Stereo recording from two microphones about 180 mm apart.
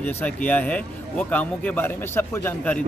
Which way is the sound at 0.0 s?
10° left (ahead or behind).